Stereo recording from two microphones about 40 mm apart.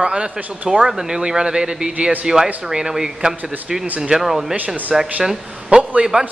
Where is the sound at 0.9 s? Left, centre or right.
Centre.